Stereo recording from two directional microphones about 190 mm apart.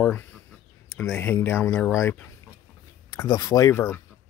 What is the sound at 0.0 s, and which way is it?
Speech, 10° left (ahead or behind).